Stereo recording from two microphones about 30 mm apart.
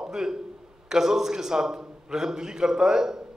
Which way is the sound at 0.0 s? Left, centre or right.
Right.